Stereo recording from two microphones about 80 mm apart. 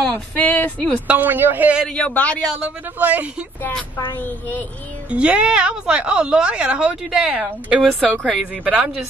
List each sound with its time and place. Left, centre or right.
0.0 s speech: left
1.0 s a woman's voice: right
2.0 s a man's voice: centre
2.6 s a woman's voice: centre
4.1 s speech: left
5.1 s a woman's voice: centre
8.6 s a woman's voice: centre